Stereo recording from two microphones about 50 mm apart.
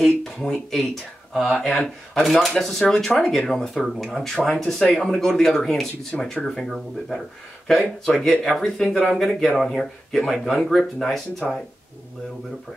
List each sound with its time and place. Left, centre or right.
0.2 s speech: centre